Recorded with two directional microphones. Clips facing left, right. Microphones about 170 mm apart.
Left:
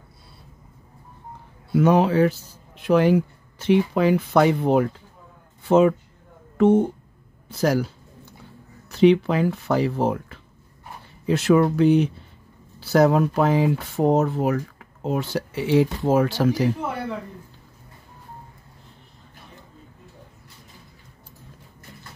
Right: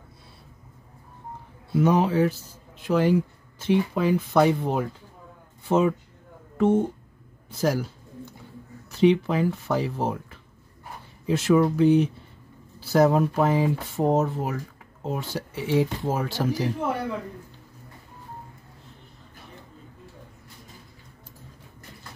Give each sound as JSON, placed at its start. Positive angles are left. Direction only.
{"t": 1.8, "sound": "speech", "side_deg": 75}
{"t": 5.7, "sound": "speech", "side_deg": 85}
{"t": 7.4, "sound": "speech", "side_deg": 75}
{"t": 9.0, "sound": "speech", "side_deg": 75}